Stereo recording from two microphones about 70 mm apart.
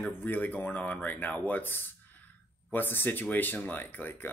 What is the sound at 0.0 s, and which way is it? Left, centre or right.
Speech, left.